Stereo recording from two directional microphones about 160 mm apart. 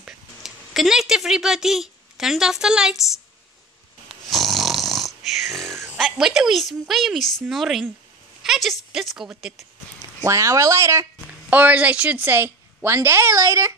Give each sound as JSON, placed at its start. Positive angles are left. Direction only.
{"t": 0.0, "sound": "a sound", "side_deg": 0}
{"t": 4.1, "sound": "snoring", "side_deg": 0}
{"t": 5.9, "sound": "a woman's voice", "side_deg": 0}
{"t": 8.4, "sound": "a sound", "side_deg": 0}
{"t": 8.9, "sound": "a woman's voice", "side_deg": 0}
{"t": 10.2, "sound": "a woman's voice", "side_deg": -20}